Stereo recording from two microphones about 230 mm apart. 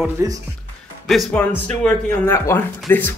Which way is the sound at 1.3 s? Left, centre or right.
Centre.